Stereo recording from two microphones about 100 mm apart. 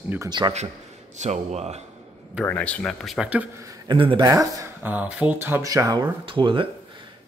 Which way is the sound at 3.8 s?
55° right (ahead or behind).